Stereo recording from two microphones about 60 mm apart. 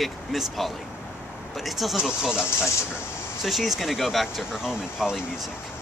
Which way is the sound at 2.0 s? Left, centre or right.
Centre.